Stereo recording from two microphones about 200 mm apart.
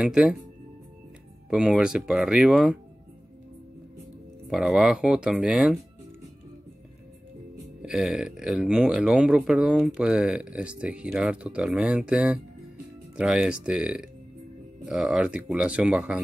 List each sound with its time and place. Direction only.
0.0 s speech: 5° right (ahead or behind)
1.5 s speech: centre (ahead or behind)
4.5 s speech: centre (ahead or behind)
7.8 s speech: 5° right (ahead or behind)